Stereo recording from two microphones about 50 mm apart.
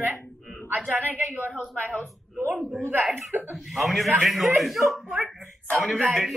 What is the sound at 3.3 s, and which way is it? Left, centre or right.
Speech, right.